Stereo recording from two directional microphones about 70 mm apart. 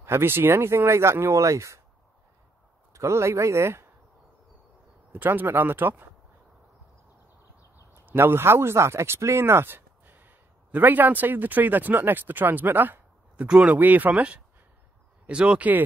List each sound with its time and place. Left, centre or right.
0.0 s speech: right
2.9 s speech: right
5.1 s speech: right
7.9 s speech: right
13.5 s speech: centre
13.7 s speech: right